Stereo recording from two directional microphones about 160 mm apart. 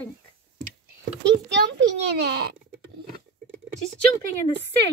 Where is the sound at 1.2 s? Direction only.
90° right.